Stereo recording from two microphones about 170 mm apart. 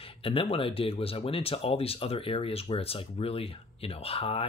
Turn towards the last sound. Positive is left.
turn(degrees=35)  # may be behind; listen again after turning